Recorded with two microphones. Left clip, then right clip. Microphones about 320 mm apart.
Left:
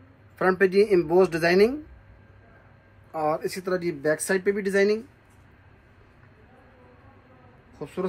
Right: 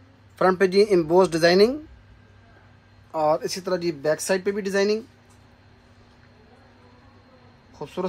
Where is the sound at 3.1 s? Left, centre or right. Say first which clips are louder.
Right 4 dB; right.